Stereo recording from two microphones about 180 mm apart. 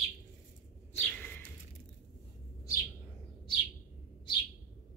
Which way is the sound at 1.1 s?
10° left (ahead or behind).